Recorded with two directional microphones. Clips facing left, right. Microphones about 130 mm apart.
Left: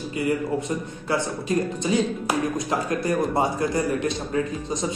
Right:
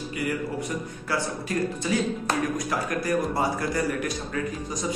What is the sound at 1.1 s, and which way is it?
A man's voice, 20° left (ahead or behind).